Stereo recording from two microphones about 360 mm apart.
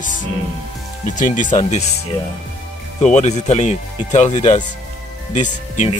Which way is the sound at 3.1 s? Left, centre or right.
Centre.